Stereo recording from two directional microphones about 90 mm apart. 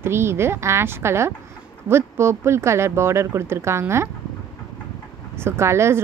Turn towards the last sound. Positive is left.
turn(degrees=-30)  # may be behind; listen again after turning